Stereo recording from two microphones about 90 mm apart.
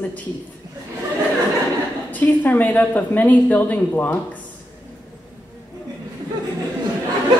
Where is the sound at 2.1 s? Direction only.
20° left (ahead or behind).